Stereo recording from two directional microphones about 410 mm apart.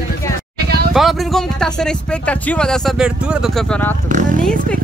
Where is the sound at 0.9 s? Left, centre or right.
Centre.